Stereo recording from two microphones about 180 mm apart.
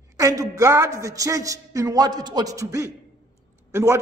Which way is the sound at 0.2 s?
20° right (ahead or behind).